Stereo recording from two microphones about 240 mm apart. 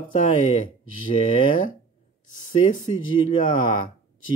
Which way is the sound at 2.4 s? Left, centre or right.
Left.